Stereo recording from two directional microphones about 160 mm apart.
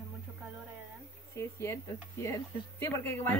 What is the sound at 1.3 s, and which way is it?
Speech, 15° left (ahead or behind).